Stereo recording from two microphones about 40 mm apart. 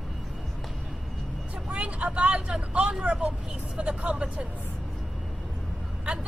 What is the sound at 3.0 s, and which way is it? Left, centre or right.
Speech, right.